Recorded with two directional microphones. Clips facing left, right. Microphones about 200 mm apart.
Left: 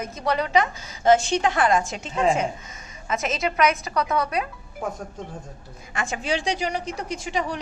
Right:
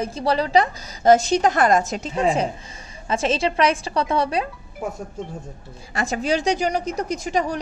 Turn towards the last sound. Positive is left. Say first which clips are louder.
# right 4 dB
turn(degrees=-40)  # may be behind; listen again after turning